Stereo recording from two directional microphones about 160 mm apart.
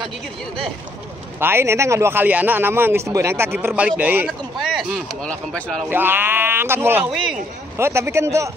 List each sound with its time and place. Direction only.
1.4 s a man's voice: 15° right (ahead or behind)
4.7 s speech: centre (ahead or behind)
5.9 s a man's voice: 15° right (ahead or behind)